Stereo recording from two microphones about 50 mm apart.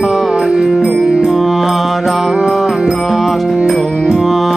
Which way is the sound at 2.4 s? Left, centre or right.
Centre.